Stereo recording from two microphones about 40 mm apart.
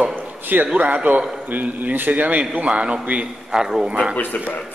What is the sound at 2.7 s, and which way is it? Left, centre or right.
Speech, right.